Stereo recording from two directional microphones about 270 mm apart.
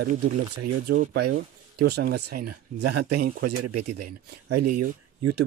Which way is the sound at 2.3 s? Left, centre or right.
Right.